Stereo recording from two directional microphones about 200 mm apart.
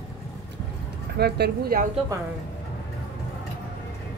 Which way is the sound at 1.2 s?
50° right (ahead or behind).